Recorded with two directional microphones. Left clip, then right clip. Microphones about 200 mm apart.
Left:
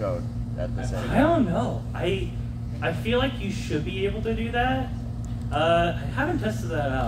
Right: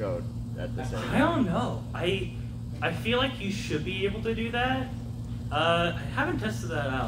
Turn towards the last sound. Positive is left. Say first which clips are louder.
# left 4 dB
turn(degrees=5)  # may be behind; listen again after turning